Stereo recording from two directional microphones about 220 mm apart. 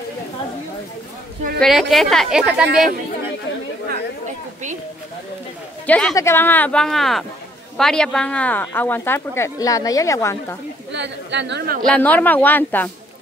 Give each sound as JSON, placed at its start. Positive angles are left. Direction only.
{"t": 1.6, "sound": "speech", "side_deg": 0}
{"t": 5.9, "sound": "speech", "side_deg": 5}
{"t": 10.9, "sound": "speech", "side_deg": -55}
{"t": 11.8, "sound": "speech", "side_deg": 5}